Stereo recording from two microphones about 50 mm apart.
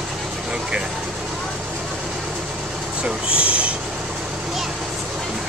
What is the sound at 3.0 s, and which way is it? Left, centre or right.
Train, right.